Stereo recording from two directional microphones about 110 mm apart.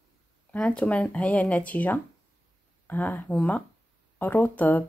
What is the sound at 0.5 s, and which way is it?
Speech, 15° left (ahead or behind).